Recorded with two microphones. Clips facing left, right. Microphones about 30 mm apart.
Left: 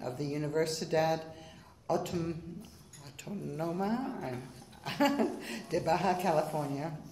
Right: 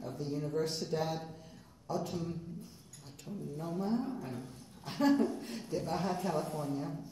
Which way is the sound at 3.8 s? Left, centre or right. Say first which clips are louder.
Right 1 dB; left.